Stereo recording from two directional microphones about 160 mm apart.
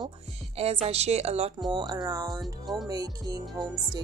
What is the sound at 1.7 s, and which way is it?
Speech, 25° right (ahead or behind).